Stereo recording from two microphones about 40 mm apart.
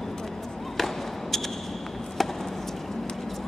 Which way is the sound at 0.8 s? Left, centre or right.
Centre.